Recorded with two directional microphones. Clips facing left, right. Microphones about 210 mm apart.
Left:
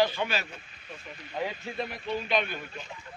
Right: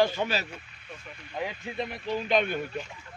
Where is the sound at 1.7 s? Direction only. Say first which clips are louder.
Right 1 dB; 20° right (ahead or behind).